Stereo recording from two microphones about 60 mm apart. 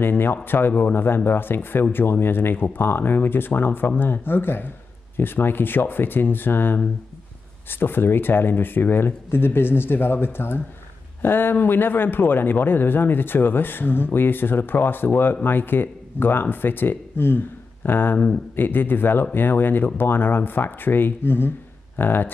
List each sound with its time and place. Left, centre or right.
0.0 s speech: left